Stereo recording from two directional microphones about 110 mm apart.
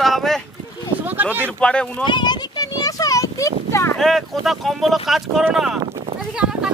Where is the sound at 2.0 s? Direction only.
40° left (ahead or behind).